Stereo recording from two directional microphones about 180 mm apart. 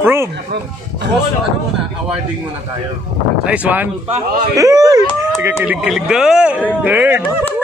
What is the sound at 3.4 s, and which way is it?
Speech, 5° right (ahead or behind).